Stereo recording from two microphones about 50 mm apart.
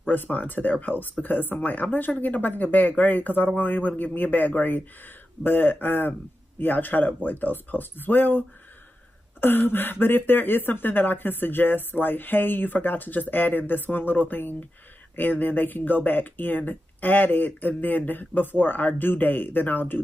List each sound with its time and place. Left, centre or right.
0.1 s speech: left